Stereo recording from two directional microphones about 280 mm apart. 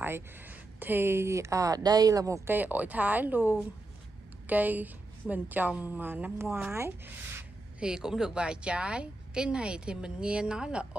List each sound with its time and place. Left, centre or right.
0.0 s a woman's voice: centre